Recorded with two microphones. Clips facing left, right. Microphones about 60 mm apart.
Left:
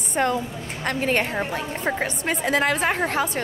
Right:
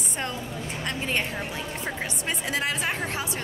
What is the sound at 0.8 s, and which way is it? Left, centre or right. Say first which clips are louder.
A woman's voice: left 7 dB; left.